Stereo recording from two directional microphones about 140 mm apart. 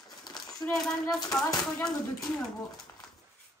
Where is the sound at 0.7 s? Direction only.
Centre (ahead or behind).